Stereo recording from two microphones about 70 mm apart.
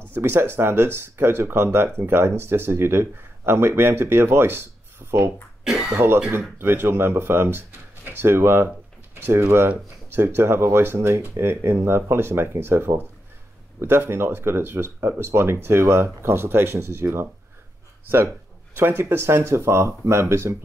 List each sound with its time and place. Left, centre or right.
0.1 s speech: right
5.6 s speech: centre
5.9 s speech: right
18.8 s speech: right